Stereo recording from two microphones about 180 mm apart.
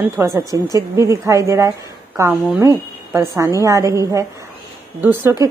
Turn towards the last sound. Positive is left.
turn(degrees=-15)  # may be behind; listen again after turning